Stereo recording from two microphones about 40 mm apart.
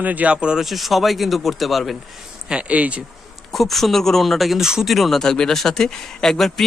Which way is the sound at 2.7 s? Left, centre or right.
Right.